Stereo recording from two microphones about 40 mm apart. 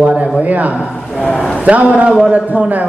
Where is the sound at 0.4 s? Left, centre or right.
Right.